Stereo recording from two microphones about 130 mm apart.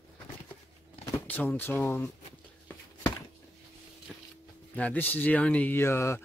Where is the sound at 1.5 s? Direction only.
15° left (ahead or behind).